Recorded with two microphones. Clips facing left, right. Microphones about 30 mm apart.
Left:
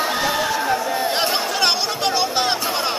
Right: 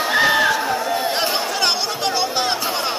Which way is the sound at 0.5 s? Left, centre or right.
Centre.